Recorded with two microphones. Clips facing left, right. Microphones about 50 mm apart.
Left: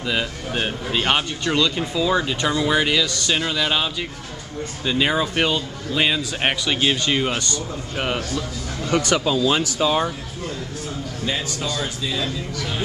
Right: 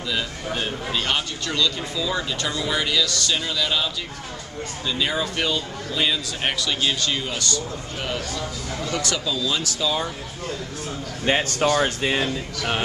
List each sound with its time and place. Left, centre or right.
0.0 s speech: left
9.1 s speech: left
9.8 s speech: left
11.2 s a man's voice: right